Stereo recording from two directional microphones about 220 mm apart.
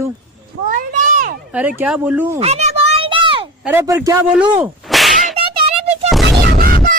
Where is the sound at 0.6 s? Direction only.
40° right (ahead or behind).